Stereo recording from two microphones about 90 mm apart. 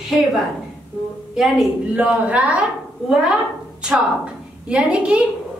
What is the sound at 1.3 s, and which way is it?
Speech, 5° right (ahead or behind).